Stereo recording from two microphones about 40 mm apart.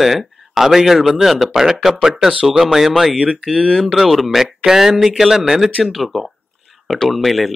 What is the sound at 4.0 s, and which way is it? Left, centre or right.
A man's voice, centre.